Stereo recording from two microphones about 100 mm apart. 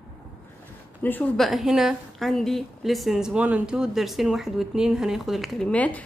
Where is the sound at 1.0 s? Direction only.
20° left (ahead or behind).